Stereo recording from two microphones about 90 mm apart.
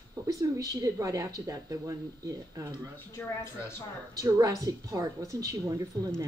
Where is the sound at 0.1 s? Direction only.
40° right (ahead or behind).